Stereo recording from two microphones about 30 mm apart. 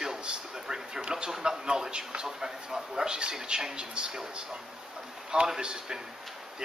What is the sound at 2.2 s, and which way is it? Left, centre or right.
Speech, centre.